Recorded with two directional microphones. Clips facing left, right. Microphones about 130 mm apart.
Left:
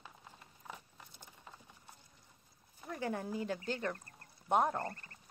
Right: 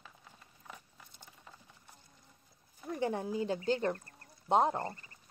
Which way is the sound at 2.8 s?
25° right (ahead or behind).